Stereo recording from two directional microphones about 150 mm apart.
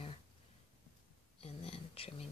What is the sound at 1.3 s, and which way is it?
Speech, 40° left (ahead or behind).